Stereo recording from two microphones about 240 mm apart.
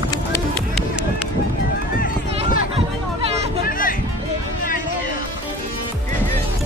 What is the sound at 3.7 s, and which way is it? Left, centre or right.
Music, left.